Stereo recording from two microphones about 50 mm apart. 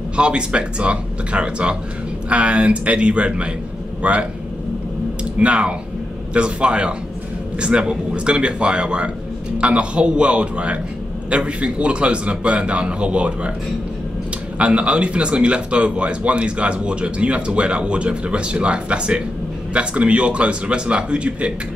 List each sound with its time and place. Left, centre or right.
0.1 s speech: centre
5.4 s speech: right
14.6 s speech: right